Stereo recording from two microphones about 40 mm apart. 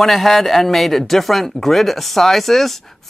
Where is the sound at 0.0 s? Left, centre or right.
Centre.